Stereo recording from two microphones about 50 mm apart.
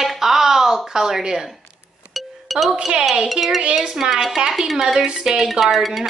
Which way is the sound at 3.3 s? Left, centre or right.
Centre.